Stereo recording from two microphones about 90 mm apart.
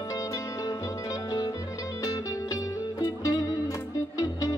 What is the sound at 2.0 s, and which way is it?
Music, 35° left (ahead or behind).